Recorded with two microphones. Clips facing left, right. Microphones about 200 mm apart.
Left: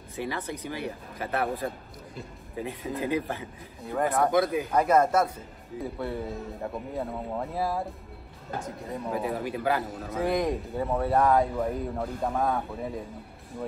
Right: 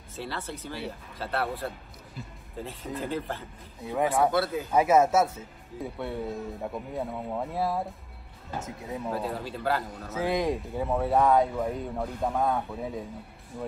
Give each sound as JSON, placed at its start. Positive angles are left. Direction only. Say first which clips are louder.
{"t": 0.1, "sound": "speech", "louder": "left 3 dB", "side_deg": 15}
{"t": 2.5, "sound": "speech", "louder": "left 3 dB", "side_deg": 15}
{"t": 4.6, "sound": "speech", "louder": "right 1 dB", "side_deg": -5}
{"t": 9.1, "sound": "speech", "louder": "left 5 dB", "side_deg": 15}
{"t": 10.1, "sound": "speech", "louder": "left 1 dB", "side_deg": 0}